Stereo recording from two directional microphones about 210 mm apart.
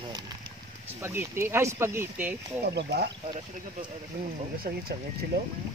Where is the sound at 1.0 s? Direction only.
10° right (ahead or behind).